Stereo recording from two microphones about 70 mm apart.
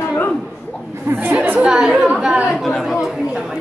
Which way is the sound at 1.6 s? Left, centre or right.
Centre.